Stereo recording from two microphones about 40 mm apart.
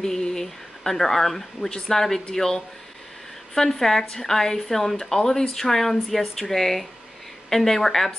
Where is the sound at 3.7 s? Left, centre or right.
Centre.